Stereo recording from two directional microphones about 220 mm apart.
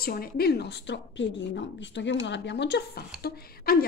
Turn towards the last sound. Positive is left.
turn(degrees=45)  # may be behind; listen again after turning